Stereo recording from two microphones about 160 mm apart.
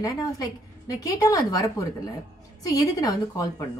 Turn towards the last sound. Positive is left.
turn(degrees=25)  # may be behind; listen again after turning